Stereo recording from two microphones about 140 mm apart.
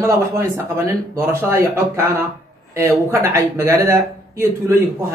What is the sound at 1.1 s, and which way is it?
Speech, 15° right (ahead or behind).